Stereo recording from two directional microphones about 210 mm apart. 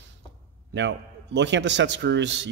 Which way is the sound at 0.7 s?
60° right (ahead or behind).